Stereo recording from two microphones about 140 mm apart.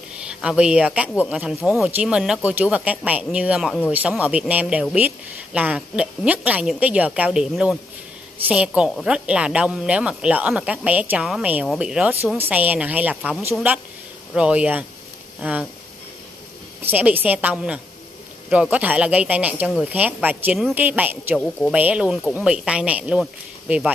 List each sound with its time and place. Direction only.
0.3 s a woman's voice: 5° right (ahead or behind)
16.8 s a woman's voice: 10° right (ahead or behind)